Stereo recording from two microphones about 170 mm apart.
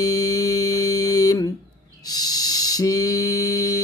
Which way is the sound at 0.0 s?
20° left (ahead or behind).